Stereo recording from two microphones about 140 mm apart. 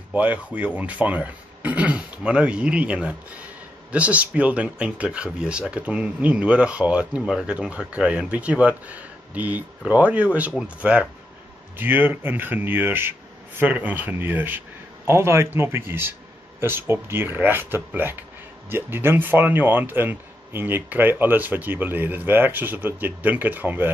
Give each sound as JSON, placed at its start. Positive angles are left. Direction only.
{"t": 0.1, "sound": "speech", "side_deg": -10}